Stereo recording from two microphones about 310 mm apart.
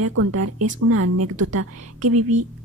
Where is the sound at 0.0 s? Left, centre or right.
Right.